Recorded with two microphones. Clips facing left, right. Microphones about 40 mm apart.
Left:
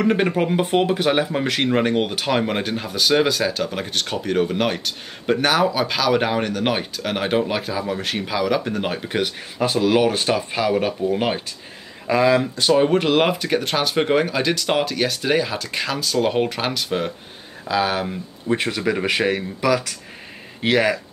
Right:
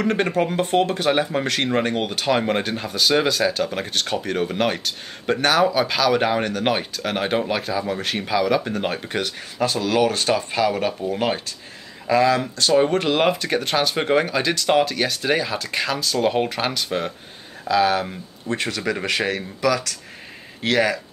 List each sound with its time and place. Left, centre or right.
0.0 s speech: centre
12.7 s speech: centre